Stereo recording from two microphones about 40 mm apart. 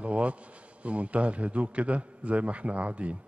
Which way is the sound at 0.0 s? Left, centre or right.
Right.